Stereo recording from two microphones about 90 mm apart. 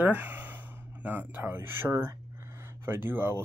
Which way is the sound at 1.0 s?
20° right (ahead or behind).